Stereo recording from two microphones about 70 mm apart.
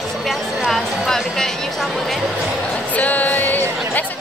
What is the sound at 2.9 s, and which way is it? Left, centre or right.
Music, left.